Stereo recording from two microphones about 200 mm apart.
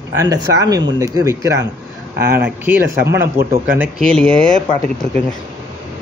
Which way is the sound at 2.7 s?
10° right (ahead or behind).